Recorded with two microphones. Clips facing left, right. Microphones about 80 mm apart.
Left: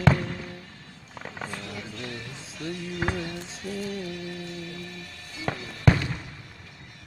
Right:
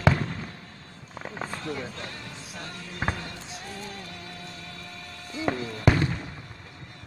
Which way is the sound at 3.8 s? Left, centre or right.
Right.